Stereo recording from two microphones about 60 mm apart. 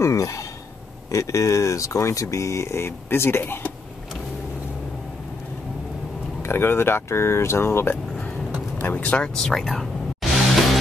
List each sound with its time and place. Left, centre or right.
0.0 s speech: left
6.4 s speech: left
8.8 s speech: left
9.2 s speech: centre
10.2 s music: centre